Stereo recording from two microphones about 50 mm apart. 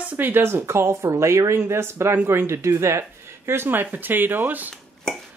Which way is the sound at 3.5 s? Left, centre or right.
Right.